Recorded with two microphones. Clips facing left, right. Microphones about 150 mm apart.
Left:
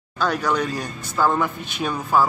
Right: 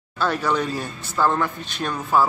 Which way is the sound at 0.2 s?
5° right (ahead or behind).